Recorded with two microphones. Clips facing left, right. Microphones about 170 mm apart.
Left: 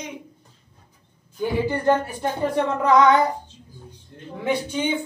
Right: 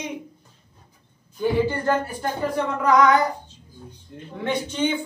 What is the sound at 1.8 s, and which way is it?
A woman's voice, 20° left (ahead or behind).